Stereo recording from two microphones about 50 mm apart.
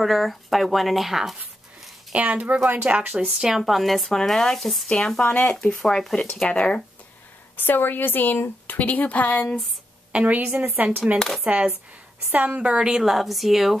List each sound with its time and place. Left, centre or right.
0.0 s speech: centre
2.1 s a woman's voice: right
2.7 s a woman's voice: right
3.3 s speech: centre
4.8 s speech: centre
5.2 s a woman's voice: left
5.5 s speech: centre
6.5 s speech: left
7.5 s a woman's voice: left
10.1 s a woman's voice: right
11.1 s speech: centre
11.4 s a woman's voice: right
13.0 s speech: centre